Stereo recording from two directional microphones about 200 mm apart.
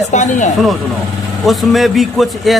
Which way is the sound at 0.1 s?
35° left (ahead or behind).